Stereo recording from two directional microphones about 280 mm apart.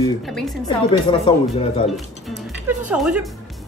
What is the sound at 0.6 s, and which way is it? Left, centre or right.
Speech, centre.